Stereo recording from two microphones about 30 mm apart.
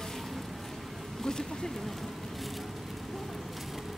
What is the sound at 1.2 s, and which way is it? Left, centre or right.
Speech, centre.